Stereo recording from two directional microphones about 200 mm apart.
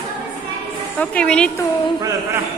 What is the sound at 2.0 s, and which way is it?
Speech, 15° right (ahead or behind).